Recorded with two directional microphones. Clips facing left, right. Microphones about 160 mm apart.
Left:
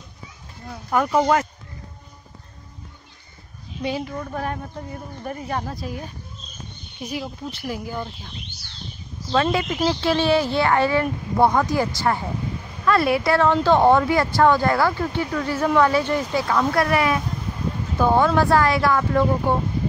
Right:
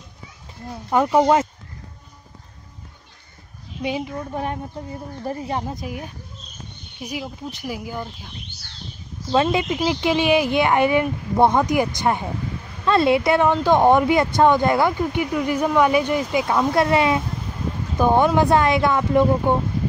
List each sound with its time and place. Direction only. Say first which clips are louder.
0.8 s speech: right 3 dB; 20° right (ahead or behind)
3.8 s speech: right 1 dB; 15° right (ahead or behind)
9.3 s speech: right 2 dB; 20° right (ahead or behind)
16.4 s speech: right 2 dB; 25° right (ahead or behind)